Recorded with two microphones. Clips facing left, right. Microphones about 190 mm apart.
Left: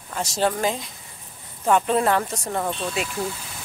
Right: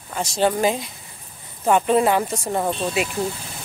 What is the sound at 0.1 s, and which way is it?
Speech, centre (ahead or behind).